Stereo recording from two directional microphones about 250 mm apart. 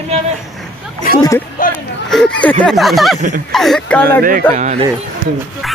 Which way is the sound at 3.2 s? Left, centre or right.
Right.